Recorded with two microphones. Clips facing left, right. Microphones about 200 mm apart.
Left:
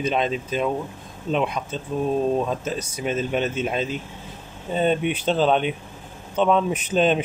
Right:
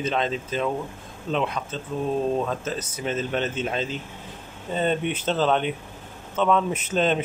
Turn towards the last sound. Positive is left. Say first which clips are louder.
# left 3 dB
turn(degrees=15)  # may be behind; listen again after turning